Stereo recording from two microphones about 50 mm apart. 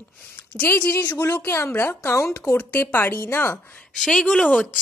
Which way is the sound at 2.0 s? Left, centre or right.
Left.